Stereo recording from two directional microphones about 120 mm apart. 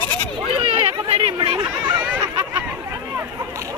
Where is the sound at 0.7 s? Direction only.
55° right (ahead or behind).